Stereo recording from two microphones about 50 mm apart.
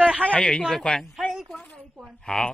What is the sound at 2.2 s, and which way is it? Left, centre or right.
Speech, centre.